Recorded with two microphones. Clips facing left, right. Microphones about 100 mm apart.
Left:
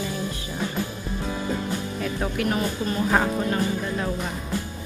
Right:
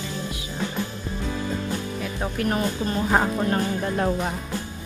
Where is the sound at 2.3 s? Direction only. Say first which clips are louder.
Right 2 dB; 35° right (ahead or behind).